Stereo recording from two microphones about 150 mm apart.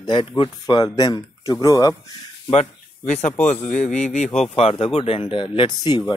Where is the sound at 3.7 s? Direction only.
55° left (ahead or behind).